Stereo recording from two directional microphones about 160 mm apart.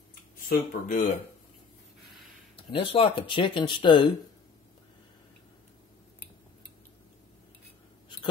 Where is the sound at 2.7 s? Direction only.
35° left (ahead or behind).